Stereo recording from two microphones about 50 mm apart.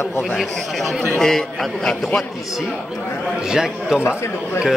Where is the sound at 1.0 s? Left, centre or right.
Centre.